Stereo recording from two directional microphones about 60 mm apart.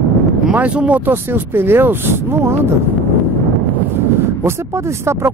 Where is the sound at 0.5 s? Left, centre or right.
Right.